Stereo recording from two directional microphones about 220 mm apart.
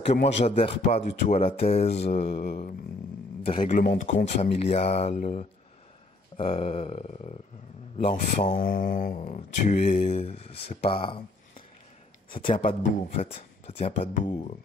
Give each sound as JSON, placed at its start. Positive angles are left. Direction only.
{"t": 0.0, "sound": "speech", "side_deg": 30}
{"t": 0.4, "sound": "mantra", "side_deg": 30}
{"t": 3.4, "sound": "speech", "side_deg": 30}
{"t": 4.6, "sound": "mantra", "side_deg": 30}
{"t": 8.5, "sound": "mantra", "side_deg": 40}
{"t": 13.2, "sound": "speech", "side_deg": 25}